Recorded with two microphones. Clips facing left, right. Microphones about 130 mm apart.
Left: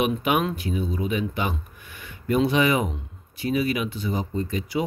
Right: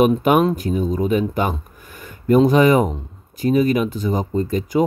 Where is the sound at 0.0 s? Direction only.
40° right (ahead or behind).